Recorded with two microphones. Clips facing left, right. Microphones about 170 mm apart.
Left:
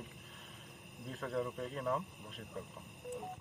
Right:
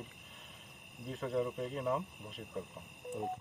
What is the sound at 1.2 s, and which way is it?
Speech, 15° right (ahead or behind).